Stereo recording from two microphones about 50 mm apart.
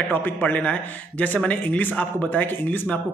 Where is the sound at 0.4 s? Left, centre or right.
Left.